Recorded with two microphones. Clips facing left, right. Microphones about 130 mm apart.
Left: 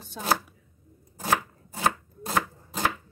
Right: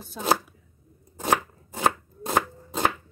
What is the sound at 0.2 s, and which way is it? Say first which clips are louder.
Speech: right 4 dB; centre (ahead or behind).